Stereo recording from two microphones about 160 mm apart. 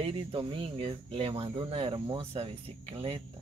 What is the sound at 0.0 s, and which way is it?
Speech, 35° right (ahead or behind).